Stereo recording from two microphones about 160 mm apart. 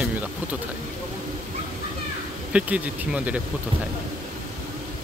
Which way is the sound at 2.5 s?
10° right (ahead or behind).